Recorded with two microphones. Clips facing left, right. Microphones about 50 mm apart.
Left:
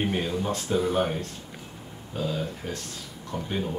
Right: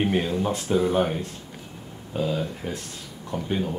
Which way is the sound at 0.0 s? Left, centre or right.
Centre.